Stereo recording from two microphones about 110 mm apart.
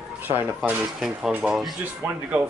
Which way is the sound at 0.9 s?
5° right (ahead or behind).